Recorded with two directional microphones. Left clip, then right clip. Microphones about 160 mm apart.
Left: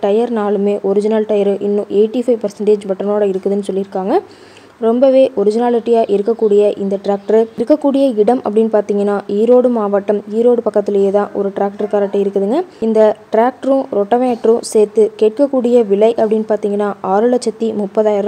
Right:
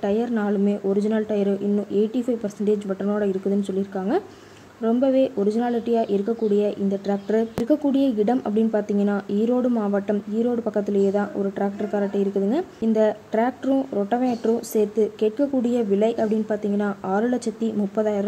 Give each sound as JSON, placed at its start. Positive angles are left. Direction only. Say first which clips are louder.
{"t": 0.0, "sound": "speech", "louder": "left 10 dB", "side_deg": 40}